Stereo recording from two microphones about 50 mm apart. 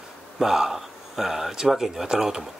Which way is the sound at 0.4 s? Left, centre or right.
Centre.